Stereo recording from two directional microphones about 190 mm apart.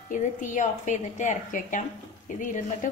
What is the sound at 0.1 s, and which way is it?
A woman's voice, 40° left (ahead or behind).